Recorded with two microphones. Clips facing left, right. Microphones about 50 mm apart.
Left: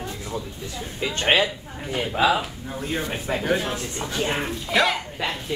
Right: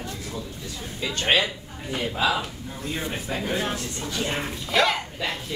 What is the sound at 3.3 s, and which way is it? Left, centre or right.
Speech, left.